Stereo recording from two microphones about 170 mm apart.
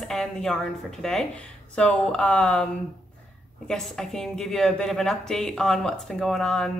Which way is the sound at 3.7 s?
5° left (ahead or behind).